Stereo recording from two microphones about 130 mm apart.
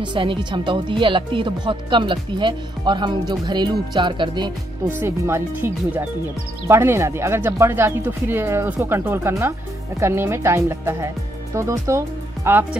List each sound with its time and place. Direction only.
0.0 s speech: 40° right (ahead or behind)
4.8 s speech: 20° right (ahead or behind)